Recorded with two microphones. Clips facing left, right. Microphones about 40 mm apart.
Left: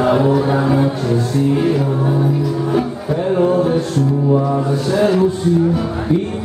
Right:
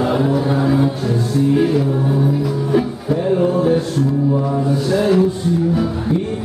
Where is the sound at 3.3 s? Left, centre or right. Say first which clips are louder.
Left 2 dB; centre.